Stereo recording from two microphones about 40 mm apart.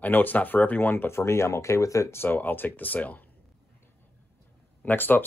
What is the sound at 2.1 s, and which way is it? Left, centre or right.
Speech, left.